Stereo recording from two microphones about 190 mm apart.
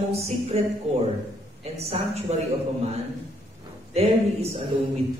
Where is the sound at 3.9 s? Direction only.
35° right (ahead or behind).